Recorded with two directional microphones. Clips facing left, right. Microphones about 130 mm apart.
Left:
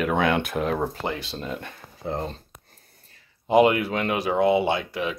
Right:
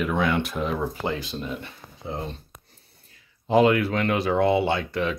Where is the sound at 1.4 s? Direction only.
45° left (ahead or behind).